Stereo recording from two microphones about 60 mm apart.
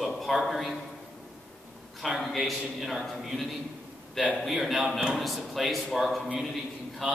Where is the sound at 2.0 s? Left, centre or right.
Centre.